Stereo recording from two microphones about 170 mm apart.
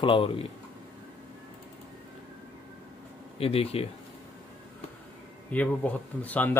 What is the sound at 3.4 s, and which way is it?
Speech, 35° left (ahead or behind).